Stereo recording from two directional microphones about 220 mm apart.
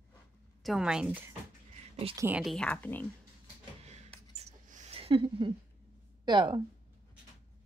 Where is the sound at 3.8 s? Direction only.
30° right (ahead or behind).